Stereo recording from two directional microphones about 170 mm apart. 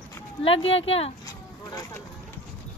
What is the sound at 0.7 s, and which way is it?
Speech, 90° left.